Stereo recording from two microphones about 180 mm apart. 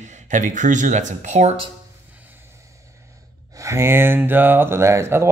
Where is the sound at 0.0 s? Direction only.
40° right (ahead or behind).